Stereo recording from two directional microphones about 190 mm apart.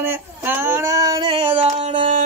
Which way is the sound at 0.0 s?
10° right (ahead or behind).